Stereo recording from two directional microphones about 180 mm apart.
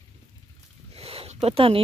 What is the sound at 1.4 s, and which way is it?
Speech, 30° right (ahead or behind).